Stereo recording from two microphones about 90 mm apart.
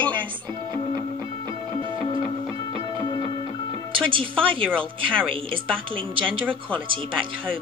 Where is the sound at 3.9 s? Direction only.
75° right (ahead or behind).